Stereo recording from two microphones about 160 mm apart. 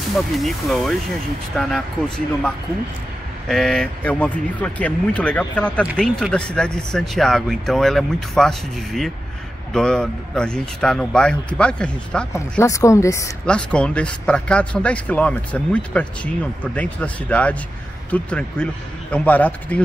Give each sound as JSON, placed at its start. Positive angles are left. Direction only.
{"t": 0.3, "sound": "speech", "side_deg": 0}
{"t": 12.3, "sound": "speech", "side_deg": 20}
{"t": 13.5, "sound": "speech", "side_deg": 5}